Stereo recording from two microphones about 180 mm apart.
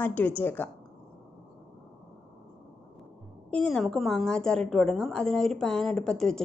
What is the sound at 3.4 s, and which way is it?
A woman's voice, 5° left (ahead or behind).